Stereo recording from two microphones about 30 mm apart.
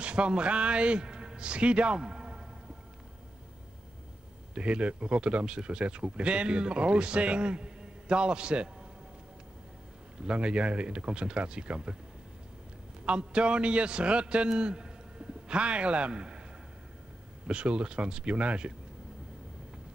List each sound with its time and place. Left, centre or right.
0.0 s a man's voice: right
2.0 s a sound: right
4.6 s speech: right
10.1 s speech: right
13.0 s a man's voice: right
17.5 s speech: right